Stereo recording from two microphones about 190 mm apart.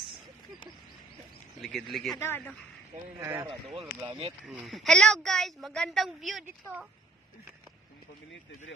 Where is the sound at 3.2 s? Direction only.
15° right (ahead or behind).